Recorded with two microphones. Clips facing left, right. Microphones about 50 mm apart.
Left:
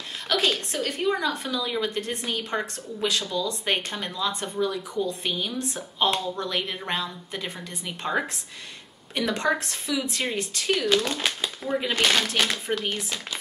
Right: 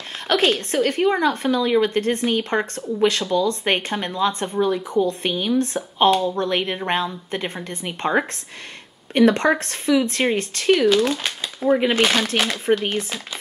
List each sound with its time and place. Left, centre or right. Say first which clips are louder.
0.3 s speech: right 6 dB; right
10.9 s speech: right 5 dB; centre
11.6 s speech: right 10 dB; right
11.9 s speech: right 4 dB; centre
12.7 s speech: right 9 dB; right